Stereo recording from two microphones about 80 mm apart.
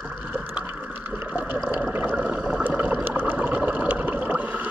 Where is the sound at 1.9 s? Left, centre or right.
Right.